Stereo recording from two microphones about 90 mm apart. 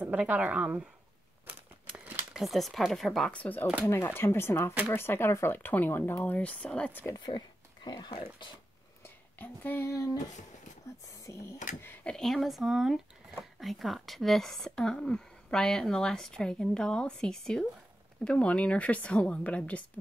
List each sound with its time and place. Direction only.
0.0 s a woman's voice: 15° right (ahead or behind)
2.3 s speech: centre (ahead or behind)
3.3 s a woman's voice: 20° left (ahead or behind)
7.2 s a sound: 55° left (ahead or behind)
9.0 s a sound: 20° left (ahead or behind)
11.1 s speech: 35° left (ahead or behind)
12.0 s a woman's voice: 10° left (ahead or behind)